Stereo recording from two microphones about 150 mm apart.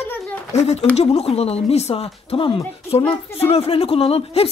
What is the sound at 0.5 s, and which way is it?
Speech, 45° left (ahead or behind).